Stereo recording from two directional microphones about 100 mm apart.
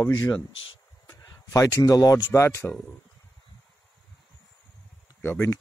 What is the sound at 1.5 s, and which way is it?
Speech, 35° left (ahead or behind).